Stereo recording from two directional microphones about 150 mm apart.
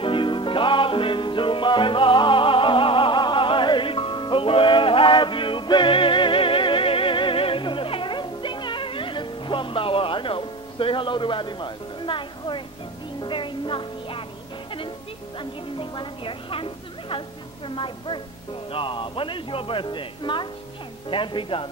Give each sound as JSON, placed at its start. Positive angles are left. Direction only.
{"t": 0.0, "sound": "music", "side_deg": 35}
{"t": 15.3, "sound": "music", "side_deg": 30}
{"t": 17.6, "sound": "a man's voice", "side_deg": 35}